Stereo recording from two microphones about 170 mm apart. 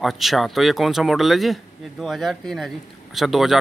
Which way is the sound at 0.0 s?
Centre (ahead or behind).